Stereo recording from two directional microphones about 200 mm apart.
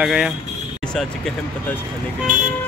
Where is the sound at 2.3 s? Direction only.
40° right (ahead or behind).